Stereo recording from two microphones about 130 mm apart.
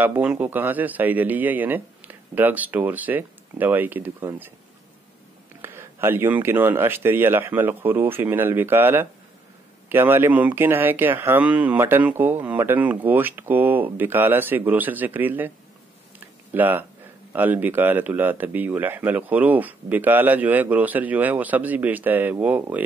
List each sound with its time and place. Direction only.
0.0 s speech: 15° right (ahead or behind)
5.6 s speech: 20° right (ahead or behind)
16.5 s speech: 15° right (ahead or behind)